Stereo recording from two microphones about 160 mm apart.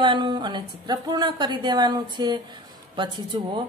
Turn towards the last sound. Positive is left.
turn(degrees=-30)  # may be behind; listen again after turning